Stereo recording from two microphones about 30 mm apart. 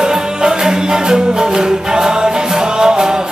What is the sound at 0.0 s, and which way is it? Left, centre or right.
Music, right.